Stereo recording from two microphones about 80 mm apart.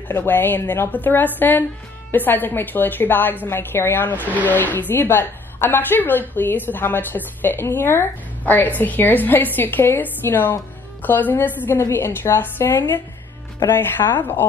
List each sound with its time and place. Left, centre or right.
0.1 s a woman's voice: left